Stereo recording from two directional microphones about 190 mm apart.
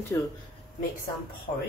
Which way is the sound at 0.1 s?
15° left (ahead or behind).